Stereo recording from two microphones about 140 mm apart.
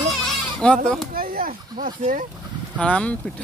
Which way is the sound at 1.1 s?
90° right.